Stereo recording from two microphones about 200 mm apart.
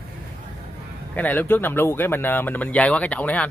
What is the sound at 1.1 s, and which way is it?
Speech, 10° left (ahead or behind).